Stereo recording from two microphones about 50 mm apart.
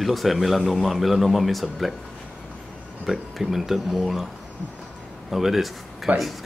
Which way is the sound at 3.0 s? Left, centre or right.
Centre.